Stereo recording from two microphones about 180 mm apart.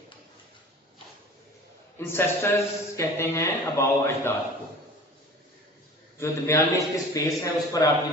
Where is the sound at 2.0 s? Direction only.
15° left (ahead or behind).